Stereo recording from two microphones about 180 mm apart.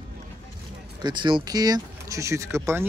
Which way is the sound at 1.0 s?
25° right (ahead or behind).